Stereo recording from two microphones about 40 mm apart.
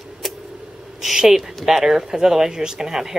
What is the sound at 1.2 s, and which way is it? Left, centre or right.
Speech, centre.